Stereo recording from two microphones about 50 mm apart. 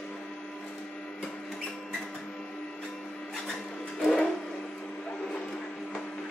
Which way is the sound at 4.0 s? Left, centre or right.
Centre.